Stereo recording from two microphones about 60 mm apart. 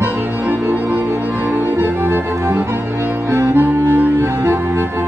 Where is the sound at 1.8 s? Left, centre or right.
Right.